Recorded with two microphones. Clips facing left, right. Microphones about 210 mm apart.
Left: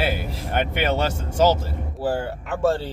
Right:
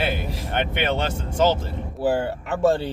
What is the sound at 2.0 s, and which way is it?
Speech, 20° right (ahead or behind).